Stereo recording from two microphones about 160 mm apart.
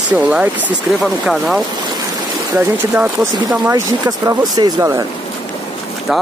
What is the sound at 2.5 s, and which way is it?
Speech, 15° right (ahead or behind).